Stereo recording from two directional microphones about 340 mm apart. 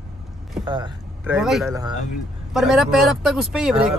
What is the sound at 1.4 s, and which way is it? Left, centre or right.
A man's voice, centre.